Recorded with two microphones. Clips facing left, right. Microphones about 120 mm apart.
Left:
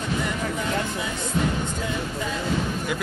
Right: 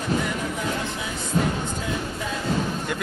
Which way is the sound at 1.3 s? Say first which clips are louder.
Right 2 dB; 45° right (ahead or behind).